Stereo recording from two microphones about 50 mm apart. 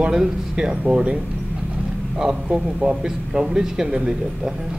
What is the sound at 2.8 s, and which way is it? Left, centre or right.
A man's voice, centre.